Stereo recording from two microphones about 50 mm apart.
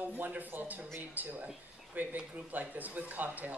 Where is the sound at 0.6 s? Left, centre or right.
Right.